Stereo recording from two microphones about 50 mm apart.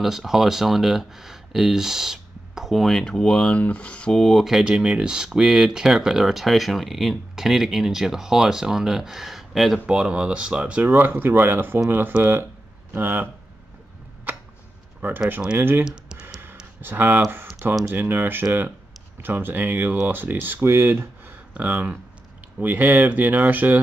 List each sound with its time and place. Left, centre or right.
0.0 s speech: centre
3.5 s speech: left
4.3 s speech: centre
4.6 s speech: centre
9.8 s speech: centre
10.9 s speech: right
15.0 s speech: right
15.8 s computer keyboard: centre
16.8 s speech: right
20.6 s speech: right
21.5 s speech: right